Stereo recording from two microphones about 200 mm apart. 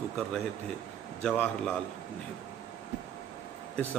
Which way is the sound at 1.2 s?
5° left (ahead or behind).